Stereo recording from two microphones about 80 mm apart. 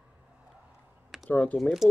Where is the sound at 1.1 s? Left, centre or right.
Centre.